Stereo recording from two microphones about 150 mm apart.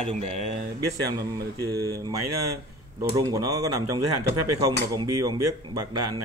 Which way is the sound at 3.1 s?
25° right (ahead or behind).